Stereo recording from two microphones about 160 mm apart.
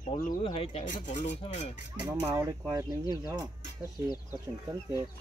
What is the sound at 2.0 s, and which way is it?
Speech, 15° right (ahead or behind).